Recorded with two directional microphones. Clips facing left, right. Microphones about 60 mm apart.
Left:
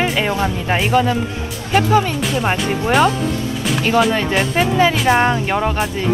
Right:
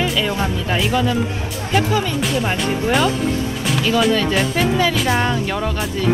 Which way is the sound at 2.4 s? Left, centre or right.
Left.